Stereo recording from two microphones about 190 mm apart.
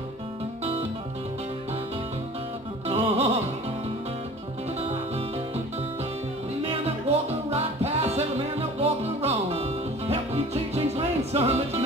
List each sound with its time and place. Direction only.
2.9 s music: 35° right (ahead or behind)
7.2 s music: 35° right (ahead or behind)